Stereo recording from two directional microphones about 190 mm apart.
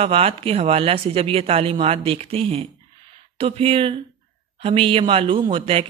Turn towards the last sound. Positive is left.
turn(degrees=-30)  # may be behind; listen again after turning